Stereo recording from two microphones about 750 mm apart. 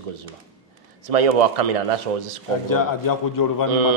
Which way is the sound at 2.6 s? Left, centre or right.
Left.